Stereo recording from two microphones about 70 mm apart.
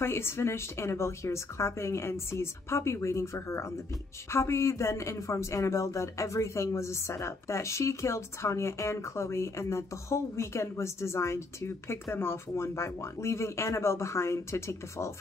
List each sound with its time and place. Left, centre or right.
0.0 s speech: left